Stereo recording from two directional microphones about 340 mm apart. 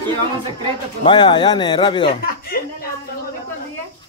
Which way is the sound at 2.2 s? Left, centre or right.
Left.